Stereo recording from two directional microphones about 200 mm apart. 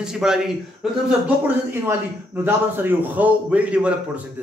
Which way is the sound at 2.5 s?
10° right (ahead or behind).